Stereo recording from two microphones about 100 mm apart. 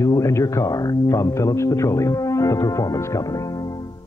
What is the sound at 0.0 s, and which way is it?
Speech, 35° left (ahead or behind).